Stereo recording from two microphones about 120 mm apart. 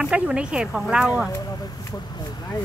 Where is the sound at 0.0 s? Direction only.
5° right (ahead or behind).